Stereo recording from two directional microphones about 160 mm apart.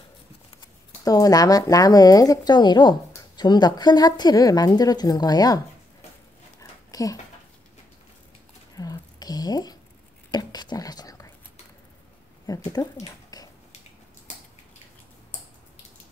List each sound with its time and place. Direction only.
1.0 s speech: 20° left (ahead or behind)
6.6 s dog: 20° left (ahead or behind)
8.7 s a sound: 25° left (ahead or behind)
10.3 s whispering: 25° left (ahead or behind)
12.5 s speech: 25° left (ahead or behind)
13.0 s a sound: 25° left (ahead or behind)